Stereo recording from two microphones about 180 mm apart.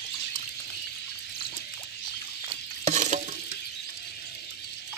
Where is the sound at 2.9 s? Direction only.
40° right (ahead or behind).